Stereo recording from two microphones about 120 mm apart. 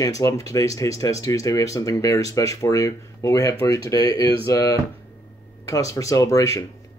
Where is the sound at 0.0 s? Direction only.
30° left (ahead or behind).